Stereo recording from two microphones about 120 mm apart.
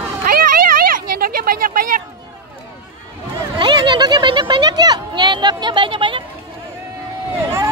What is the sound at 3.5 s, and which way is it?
Speech, 40° right (ahead or behind).